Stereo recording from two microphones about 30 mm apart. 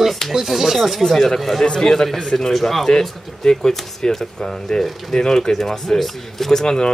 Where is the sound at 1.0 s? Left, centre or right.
Centre.